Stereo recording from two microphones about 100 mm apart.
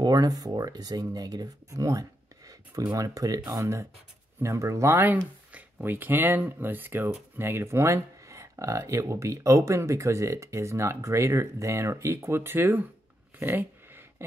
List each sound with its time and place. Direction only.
0.0 s speech: 40° right (ahead or behind)
5.5 s speech: 20° right (ahead or behind)
13.4 s a sound: 20° right (ahead or behind)